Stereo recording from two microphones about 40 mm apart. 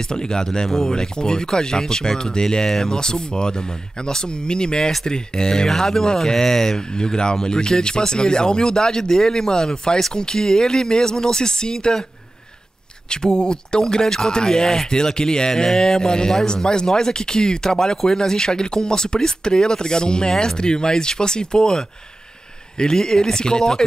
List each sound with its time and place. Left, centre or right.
0.0 s speech: centre
0.7 s speech: centre
0.9 s speech: centre
13.1 s speech: centre